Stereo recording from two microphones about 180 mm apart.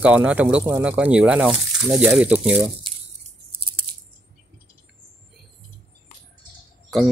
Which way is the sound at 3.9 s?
60° right (ahead or behind).